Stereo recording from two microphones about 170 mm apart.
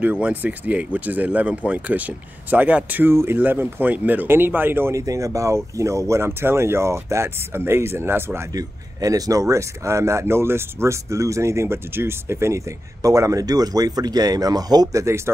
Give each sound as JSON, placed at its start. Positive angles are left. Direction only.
{"t": 0.0, "sound": "speech", "side_deg": -10}